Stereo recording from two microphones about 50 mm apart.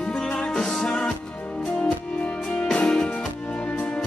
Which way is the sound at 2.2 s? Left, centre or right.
Centre.